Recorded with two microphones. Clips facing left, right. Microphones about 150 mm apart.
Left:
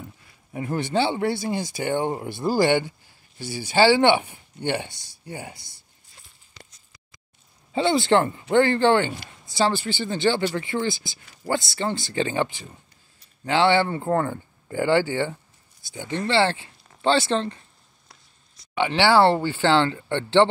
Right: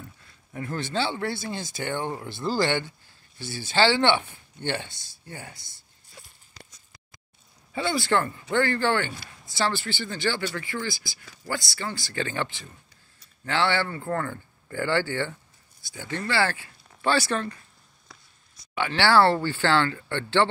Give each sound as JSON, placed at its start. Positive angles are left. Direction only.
{"t": 0.2, "sound": "speech", "side_deg": 15}
{"t": 7.7, "sound": "speech", "side_deg": 20}
{"t": 18.8, "sound": "speech", "side_deg": 20}